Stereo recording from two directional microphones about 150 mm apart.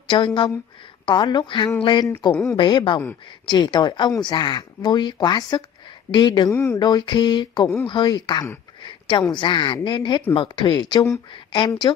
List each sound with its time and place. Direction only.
0.1 s speech: 30° left (ahead or behind)